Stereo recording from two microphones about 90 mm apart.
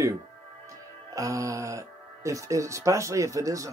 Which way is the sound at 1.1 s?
40° right (ahead or behind).